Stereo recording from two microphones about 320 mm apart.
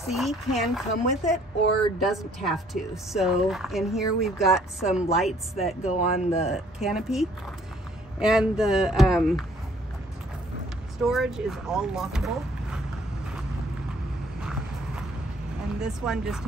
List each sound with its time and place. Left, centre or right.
0.1 s a woman's voice: centre
5.9 s speech: centre
6.8 s a woman's voice: centre
11.0 s a woman's voice: centre
15.8 s a woman's voice: centre